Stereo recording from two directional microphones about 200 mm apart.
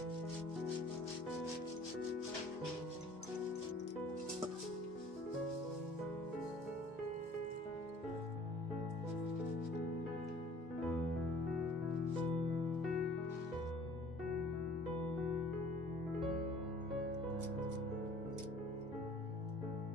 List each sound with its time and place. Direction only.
12.8 s music: centre (ahead or behind)